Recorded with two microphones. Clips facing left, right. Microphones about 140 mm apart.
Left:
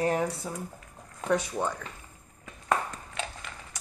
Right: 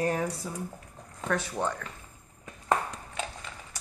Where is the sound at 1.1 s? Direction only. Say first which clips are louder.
Left 3 dB; 15° left (ahead or behind).